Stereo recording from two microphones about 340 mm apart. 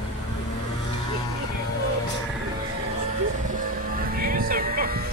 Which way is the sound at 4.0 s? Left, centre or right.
Right.